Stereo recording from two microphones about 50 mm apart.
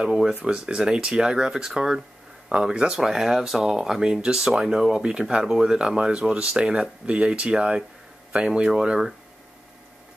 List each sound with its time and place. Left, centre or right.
0.0 s speech: centre